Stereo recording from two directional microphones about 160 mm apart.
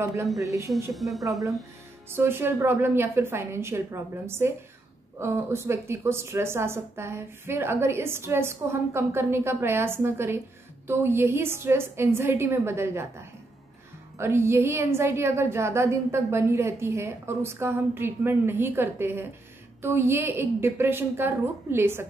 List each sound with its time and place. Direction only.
0.0 s speech: 20° right (ahead or behind)
0.9 s a woman's voice: centre (ahead or behind)
2.0 s a woman's voice: 15° right (ahead or behind)